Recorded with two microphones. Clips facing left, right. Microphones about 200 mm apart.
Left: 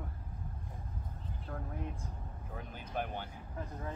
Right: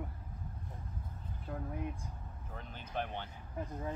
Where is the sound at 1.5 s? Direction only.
15° right (ahead or behind).